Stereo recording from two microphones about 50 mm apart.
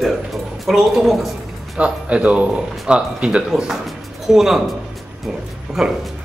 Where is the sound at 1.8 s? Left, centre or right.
Right; by 4.6 s centre.